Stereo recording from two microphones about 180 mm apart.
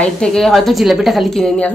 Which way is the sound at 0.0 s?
5° left (ahead or behind).